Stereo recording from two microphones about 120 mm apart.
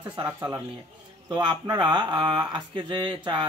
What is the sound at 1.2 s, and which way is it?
Speech, 35° right (ahead or behind).